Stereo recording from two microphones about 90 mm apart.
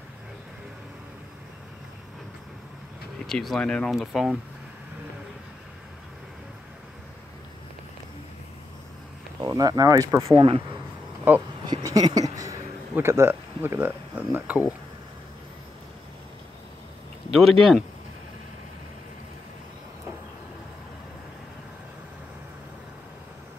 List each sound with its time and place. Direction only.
3.3 s speech: 5° left (ahead or behind)
3.9 s speech: centre (ahead or behind)
9.5 s speech: 40° right (ahead or behind)
11.3 s speech: 25° right (ahead or behind)
11.6 s a sound: 45° right (ahead or behind)
12.9 s speech: 30° right (ahead or behind)
17.3 s speech: centre (ahead or behind)